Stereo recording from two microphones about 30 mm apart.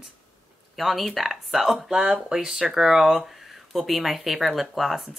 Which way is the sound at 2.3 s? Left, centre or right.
Right.